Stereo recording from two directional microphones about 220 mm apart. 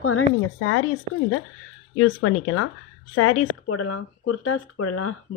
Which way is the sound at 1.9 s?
90° left.